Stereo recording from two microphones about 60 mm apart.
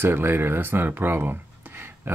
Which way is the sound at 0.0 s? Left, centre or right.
Right.